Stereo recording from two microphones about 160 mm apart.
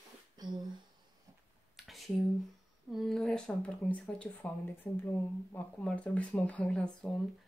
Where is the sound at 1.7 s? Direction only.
Centre (ahead or behind).